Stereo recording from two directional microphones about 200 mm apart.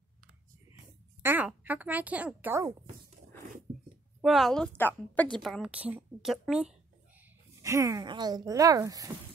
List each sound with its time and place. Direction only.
1.2 s speech: 10° right (ahead or behind)
4.2 s a woman's voice: centre (ahead or behind)
7.6 s speech: 15° right (ahead or behind)